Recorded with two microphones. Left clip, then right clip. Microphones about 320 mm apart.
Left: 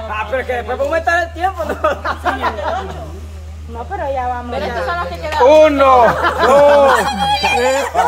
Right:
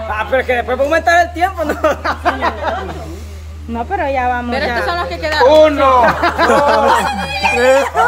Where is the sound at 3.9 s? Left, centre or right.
Right.